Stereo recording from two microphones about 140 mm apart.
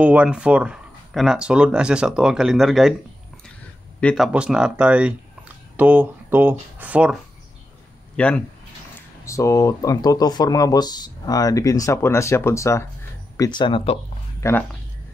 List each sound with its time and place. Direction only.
0.0 s speech: 10° right (ahead or behind)
4.0 s speech: 5° left (ahead or behind)
4.3 s speech: 5° right (ahead or behind)
8.2 s speech: 10° left (ahead or behind)
9.2 s speech: 20° left (ahead or behind)
13.4 s speech: 35° left (ahead or behind)
14.4 s speech: 20° left (ahead or behind)